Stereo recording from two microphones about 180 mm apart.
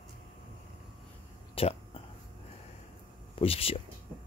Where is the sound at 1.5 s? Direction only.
35° left (ahead or behind).